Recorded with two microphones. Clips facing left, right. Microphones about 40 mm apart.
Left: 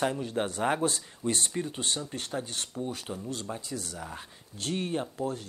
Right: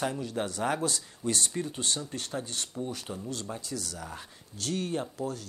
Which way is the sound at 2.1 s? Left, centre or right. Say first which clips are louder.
Left 1 dB; left.